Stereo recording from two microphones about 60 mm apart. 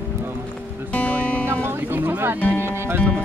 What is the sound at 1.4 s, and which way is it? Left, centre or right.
Music, right.